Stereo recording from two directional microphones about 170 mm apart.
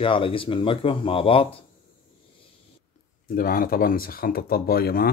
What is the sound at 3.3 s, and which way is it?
Speech, 60° left (ahead or behind).